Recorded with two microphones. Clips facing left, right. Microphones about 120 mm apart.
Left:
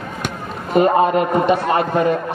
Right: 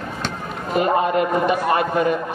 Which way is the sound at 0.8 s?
30° left (ahead or behind).